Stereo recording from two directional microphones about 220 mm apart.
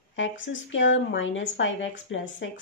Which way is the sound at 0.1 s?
60° left (ahead or behind).